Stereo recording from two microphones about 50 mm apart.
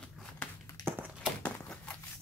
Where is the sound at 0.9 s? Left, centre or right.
Right.